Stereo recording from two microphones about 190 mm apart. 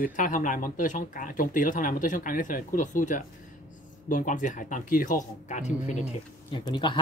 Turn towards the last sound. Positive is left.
turn(degrees=25)  # may be behind; listen again after turning